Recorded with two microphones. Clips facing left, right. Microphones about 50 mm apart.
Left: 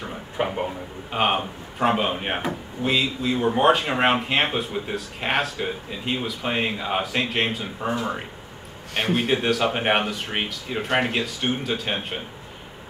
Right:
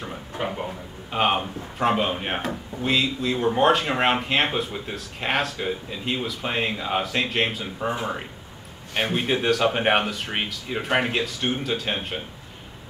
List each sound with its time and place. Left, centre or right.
0.4 s a sound: left
1.1 s a man's voice: centre
8.9 s a man's voice: centre